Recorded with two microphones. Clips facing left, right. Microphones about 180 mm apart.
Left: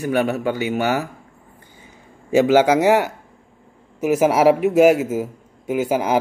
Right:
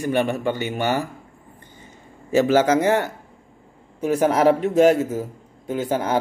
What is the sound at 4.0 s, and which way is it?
A man's voice, 5° left (ahead or behind).